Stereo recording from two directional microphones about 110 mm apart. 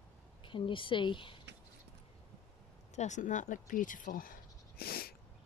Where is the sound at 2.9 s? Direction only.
90° left.